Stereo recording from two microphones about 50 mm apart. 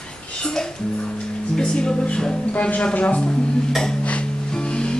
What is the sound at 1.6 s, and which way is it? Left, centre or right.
Speech, centre.